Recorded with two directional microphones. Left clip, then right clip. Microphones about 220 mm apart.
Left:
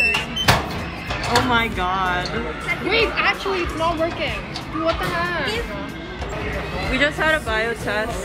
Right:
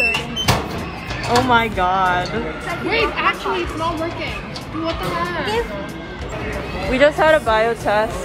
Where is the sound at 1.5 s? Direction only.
5° left (ahead or behind).